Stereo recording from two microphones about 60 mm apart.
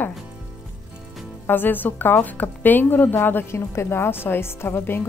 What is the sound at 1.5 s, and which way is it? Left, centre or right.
A woman's voice, left.